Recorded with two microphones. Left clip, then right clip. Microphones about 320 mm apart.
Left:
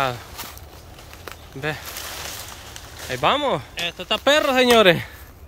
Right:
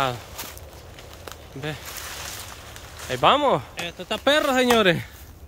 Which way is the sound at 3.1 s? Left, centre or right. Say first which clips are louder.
Right 2 dB; centre.